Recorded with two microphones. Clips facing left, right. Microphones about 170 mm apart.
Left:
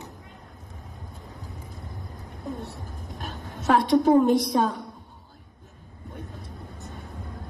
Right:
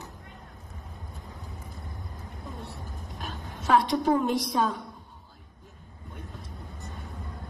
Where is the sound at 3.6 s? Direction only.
45° left (ahead or behind).